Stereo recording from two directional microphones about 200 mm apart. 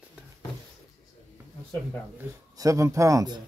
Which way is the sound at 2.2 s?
15° right (ahead or behind).